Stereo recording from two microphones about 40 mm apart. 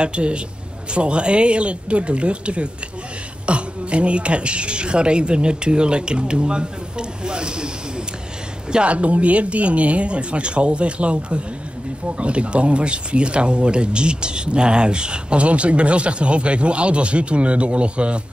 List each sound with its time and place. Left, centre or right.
0.0 s speech: right
8.7 s speech: right